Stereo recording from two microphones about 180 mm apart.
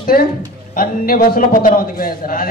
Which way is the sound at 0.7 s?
50° left (ahead or behind).